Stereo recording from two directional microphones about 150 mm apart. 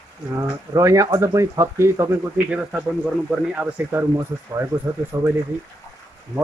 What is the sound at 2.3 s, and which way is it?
Speech, 5° right (ahead or behind).